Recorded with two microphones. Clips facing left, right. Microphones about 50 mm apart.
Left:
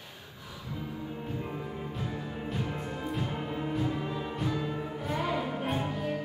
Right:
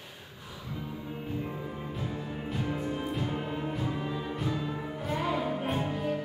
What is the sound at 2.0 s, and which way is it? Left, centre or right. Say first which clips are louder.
Music: right 1 dB; centre.